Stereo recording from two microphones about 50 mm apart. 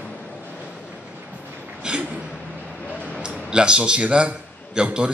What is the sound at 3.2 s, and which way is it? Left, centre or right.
A man's voice, centre.